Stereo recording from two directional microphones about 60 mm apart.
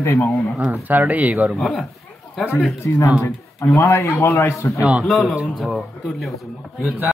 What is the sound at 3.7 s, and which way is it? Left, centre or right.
Speech, left.